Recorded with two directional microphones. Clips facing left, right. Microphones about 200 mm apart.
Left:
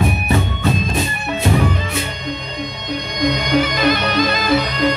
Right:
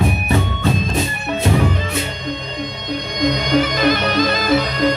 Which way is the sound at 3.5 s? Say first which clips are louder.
Right 1 dB; 45° right (ahead or behind).